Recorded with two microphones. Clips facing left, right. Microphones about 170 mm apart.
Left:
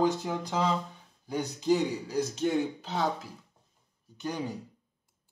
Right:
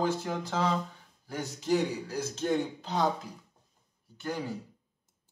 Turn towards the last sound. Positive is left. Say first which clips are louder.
# left 1 dB
turn(degrees=20)  # may be behind; listen again after turning